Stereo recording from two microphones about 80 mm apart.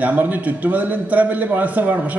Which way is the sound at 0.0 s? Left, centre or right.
Right.